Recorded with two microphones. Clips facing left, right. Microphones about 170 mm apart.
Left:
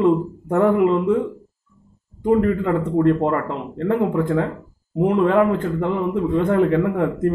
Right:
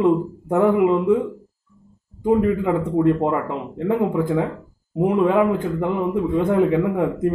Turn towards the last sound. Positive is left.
turn(degrees=-10)  # may be behind; listen again after turning